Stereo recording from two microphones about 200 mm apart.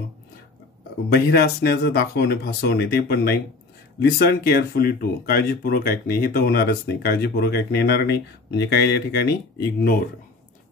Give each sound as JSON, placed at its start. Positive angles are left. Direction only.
{"t": 1.1, "sound": "speech", "side_deg": 50}